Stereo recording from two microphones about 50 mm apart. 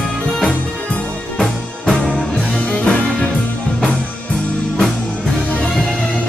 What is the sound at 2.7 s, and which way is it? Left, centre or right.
Music, left.